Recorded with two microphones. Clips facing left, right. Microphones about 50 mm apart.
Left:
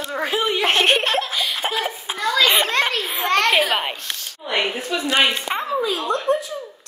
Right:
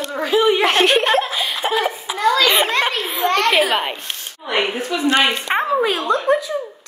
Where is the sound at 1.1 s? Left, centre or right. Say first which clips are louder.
Right 4 dB; right.